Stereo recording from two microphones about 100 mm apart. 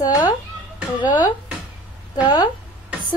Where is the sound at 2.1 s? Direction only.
40° left (ahead or behind).